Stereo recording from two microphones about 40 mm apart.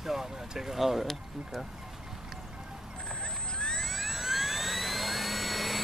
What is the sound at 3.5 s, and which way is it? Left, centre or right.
Music, centre.